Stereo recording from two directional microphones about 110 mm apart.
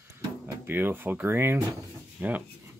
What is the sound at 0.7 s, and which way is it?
Speech, 20° right (ahead or behind).